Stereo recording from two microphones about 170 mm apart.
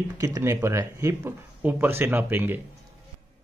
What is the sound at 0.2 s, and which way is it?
Speech, 15° right (ahead or behind).